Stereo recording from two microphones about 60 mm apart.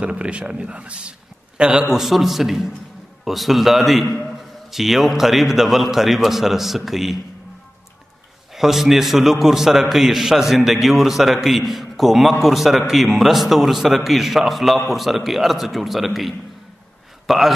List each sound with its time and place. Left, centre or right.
0.0 s speech: right
1.9 s a man's voice: centre
8.5 s a man's voice: centre